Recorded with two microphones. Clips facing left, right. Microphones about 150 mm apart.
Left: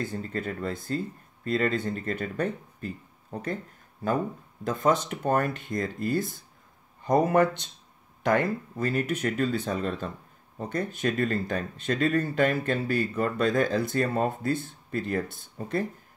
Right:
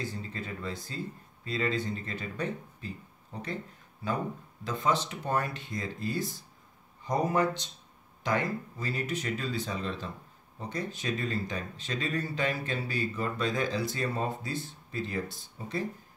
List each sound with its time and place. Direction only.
0.0 s speech: 55° left (ahead or behind)
4.6 s speech: 50° left (ahead or behind)